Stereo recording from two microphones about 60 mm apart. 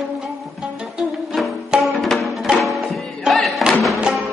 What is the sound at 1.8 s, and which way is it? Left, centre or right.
Music, centre.